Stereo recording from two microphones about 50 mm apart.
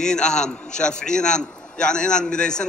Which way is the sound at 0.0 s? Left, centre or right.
Centre.